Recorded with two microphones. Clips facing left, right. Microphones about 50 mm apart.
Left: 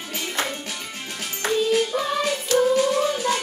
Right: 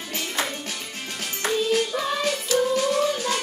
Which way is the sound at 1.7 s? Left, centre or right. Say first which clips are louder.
Left 2 dB; centre.